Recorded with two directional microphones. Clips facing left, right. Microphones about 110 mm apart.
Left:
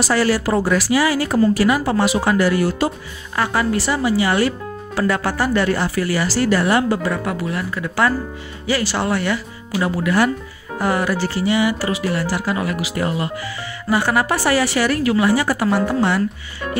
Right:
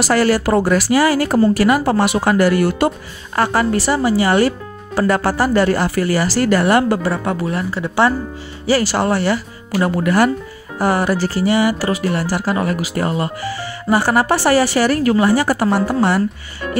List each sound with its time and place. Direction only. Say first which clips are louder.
0.1 s speech: right 4 dB; 50° right (ahead or behind)
3.3 s speech: right 3 dB; 40° right (ahead or behind)
7.1 s speech: right 3 dB; 35° right (ahead or behind)
8.6 s speech: right 4 dB; 40° right (ahead or behind)